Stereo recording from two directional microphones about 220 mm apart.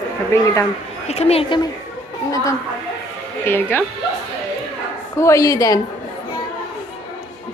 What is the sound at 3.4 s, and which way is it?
Speech, 10° left (ahead or behind).